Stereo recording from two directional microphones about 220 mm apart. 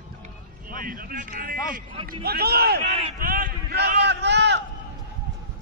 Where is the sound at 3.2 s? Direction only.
40° right (ahead or behind).